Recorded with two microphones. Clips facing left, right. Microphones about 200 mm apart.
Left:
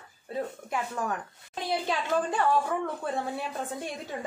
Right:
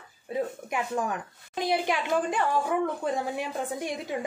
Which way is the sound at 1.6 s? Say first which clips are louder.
Right 3 dB; 15° right (ahead or behind).